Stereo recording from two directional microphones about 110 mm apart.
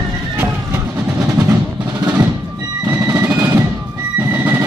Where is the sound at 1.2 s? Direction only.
15° right (ahead or behind).